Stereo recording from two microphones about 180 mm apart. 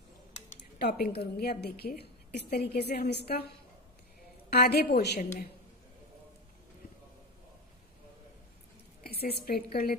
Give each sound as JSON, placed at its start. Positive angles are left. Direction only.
{"t": 0.7, "sound": "a woman's voice", "side_deg": 60}
{"t": 4.5, "sound": "a woman's voice", "side_deg": 60}
{"t": 9.0, "sound": "a woman's voice", "side_deg": 60}